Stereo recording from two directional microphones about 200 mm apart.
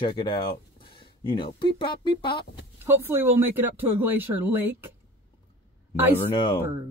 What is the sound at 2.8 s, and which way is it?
Speech, 10° right (ahead or behind).